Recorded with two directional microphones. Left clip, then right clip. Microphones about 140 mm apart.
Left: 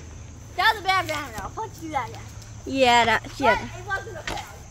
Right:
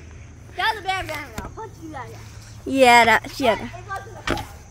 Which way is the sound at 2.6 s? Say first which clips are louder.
Right 5 dB; 80° right.